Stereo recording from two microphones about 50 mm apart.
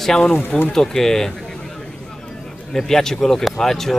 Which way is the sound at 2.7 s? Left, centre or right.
Centre.